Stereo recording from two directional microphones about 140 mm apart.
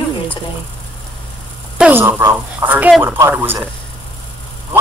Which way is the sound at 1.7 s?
10° right (ahead or behind).